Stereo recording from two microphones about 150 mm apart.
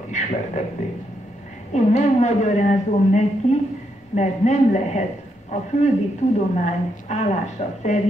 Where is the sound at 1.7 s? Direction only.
50° left (ahead or behind).